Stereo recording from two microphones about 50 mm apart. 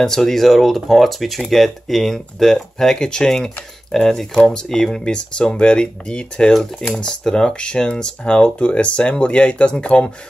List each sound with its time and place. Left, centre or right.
0.0 s speech: centre